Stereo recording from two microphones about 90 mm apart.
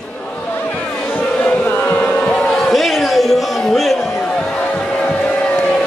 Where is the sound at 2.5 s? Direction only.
Centre (ahead or behind).